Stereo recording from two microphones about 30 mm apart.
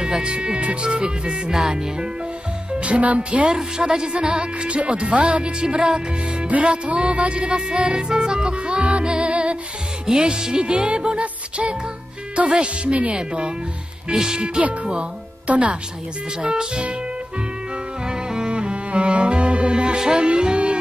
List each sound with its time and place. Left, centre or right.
0.0 s music: right
1.5 s speech: centre
2.7 s speech: right
3.5 s speech: right
4.1 s music: right
10.0 s music: right
12.4 s speech: right
13.1 s music: right
14.1 s speech: right
15.4 s a woman's voice: right
16.4 s music: right
18.0 s music: right
20.0 s speech: right
20.2 s music: right